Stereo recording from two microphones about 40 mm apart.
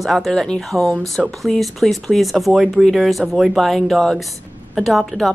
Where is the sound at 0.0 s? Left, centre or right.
Centre.